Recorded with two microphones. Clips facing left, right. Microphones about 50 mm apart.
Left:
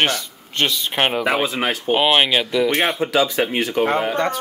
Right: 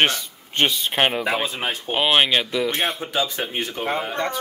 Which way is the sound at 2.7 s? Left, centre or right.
Left.